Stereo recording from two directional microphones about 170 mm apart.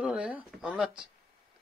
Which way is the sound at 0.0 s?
5° right (ahead or behind).